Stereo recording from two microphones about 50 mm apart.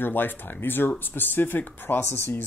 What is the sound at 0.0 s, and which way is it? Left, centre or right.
Speech, left.